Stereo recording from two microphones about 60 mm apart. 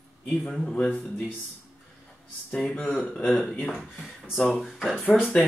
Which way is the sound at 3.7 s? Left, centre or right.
Centre.